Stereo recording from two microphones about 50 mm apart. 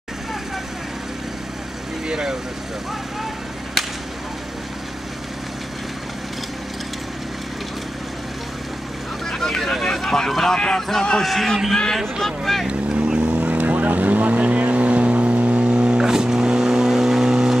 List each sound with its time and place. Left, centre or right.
2.0 s speech: centre
3.8 s whip: centre
9.3 s a sound: centre
11.2 s a man's voice: centre
11.7 s a man's voice: centre
12.6 s vehicle: centre